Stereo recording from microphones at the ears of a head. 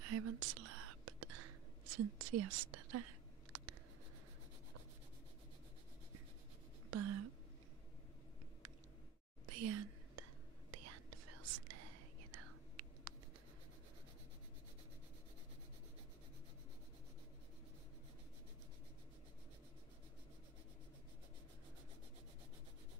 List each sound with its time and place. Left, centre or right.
0.0 s whispering: right
6.9 s a sound: right
9.5 s whispering: right